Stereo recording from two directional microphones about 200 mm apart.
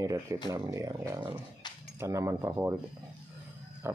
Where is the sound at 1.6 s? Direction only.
20° left (ahead or behind).